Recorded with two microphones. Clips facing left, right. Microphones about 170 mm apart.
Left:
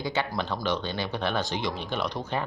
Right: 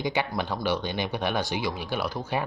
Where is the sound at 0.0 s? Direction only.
15° right (ahead or behind).